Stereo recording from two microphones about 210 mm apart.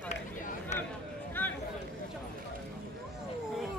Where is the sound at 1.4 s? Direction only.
10° left (ahead or behind).